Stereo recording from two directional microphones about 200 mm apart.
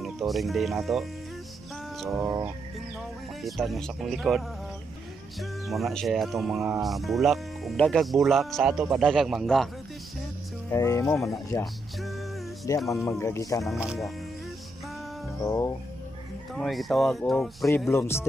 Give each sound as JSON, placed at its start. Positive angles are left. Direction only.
{"t": 0.0, "sound": "speech", "side_deg": 0}
{"t": 2.0, "sound": "a sound", "side_deg": 0}
{"t": 2.2, "sound": "music", "side_deg": -15}
{"t": 3.0, "sound": "speech", "side_deg": 0}
{"t": 5.4, "sound": "speech", "side_deg": 0}
{"t": 10.7, "sound": "speech", "side_deg": 15}
{"t": 11.6, "sound": "speech", "side_deg": 0}
{"t": 12.7, "sound": "speech", "side_deg": 15}
{"t": 13.7, "sound": "speech", "side_deg": 0}
{"t": 15.4, "sound": "speech", "side_deg": 15}
{"t": 16.5, "sound": "speech", "side_deg": 0}
{"t": 17.9, "sound": "speech", "side_deg": 10}